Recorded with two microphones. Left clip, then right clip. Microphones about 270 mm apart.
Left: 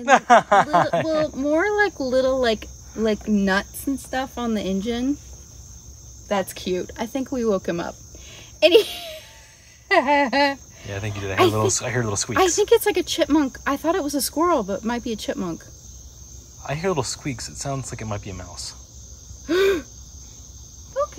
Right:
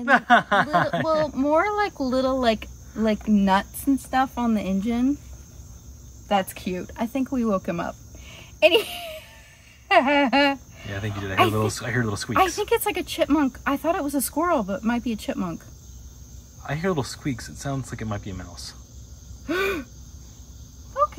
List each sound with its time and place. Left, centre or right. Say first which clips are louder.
0.0 s speech: left 3 dB; centre
6.2 s speech: even; centre
16.6 s speech: left 2 dB; centre
19.4 s owl: left 6 dB; centre